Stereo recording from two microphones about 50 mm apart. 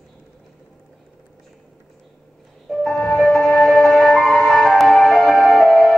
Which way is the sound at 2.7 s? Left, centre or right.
Centre.